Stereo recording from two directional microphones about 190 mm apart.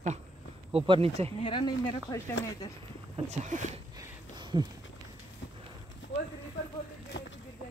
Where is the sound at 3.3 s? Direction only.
40° right (ahead or behind).